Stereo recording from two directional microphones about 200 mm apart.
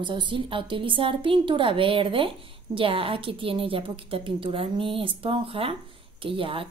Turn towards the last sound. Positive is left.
turn(degrees=-25)  # may be behind; listen again after turning